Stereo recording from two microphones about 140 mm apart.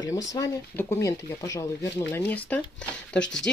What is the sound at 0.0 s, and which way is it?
Speech, 25° left (ahead or behind).